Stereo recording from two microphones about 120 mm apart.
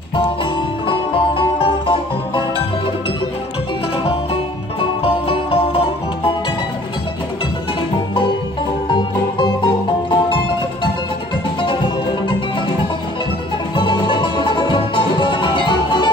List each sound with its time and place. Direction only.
0.8 s music: 45° left (ahead or behind)
8.9 s music: 40° left (ahead or behind)
13.7 s music: 45° left (ahead or behind)